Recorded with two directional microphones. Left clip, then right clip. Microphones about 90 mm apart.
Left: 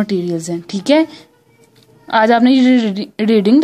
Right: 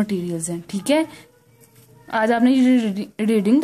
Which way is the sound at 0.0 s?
20° left (ahead or behind).